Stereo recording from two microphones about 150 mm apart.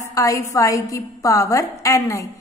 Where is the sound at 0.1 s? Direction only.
20° left (ahead or behind).